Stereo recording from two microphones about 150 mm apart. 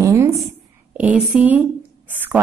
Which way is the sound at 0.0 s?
20° right (ahead or behind).